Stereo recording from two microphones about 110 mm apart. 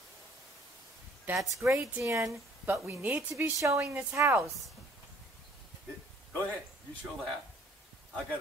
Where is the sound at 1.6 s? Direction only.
20° right (ahead or behind).